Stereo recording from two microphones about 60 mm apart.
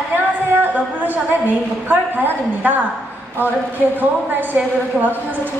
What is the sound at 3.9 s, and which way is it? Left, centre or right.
A woman's voice, right.